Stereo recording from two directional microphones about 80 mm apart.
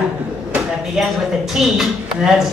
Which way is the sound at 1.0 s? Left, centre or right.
Centre.